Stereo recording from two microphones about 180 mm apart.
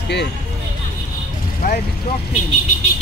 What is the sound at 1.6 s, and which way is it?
Speech, 55° left (ahead or behind).